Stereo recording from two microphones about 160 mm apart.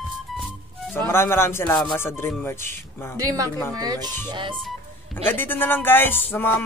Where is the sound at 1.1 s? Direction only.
15° left (ahead or behind).